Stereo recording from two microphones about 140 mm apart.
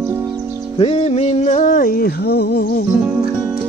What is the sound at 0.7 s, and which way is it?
Music, 45° left (ahead or behind).